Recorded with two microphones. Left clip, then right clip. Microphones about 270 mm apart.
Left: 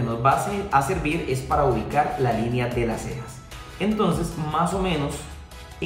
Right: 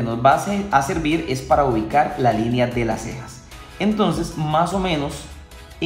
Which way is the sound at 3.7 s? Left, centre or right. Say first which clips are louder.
Right 3 dB; right.